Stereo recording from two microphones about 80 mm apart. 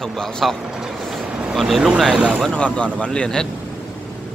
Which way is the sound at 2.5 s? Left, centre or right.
Centre.